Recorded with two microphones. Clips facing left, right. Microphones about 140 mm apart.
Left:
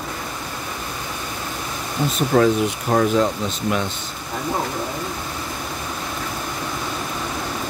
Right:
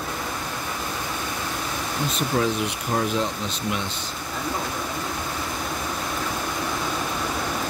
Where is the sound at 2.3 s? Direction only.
75° left (ahead or behind).